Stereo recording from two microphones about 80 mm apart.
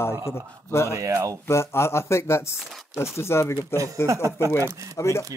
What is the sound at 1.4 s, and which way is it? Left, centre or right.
Speech, left.